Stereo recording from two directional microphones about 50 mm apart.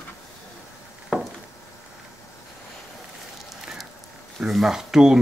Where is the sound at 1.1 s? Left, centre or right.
Centre.